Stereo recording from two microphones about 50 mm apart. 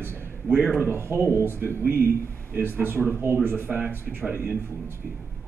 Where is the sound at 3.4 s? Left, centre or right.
Right.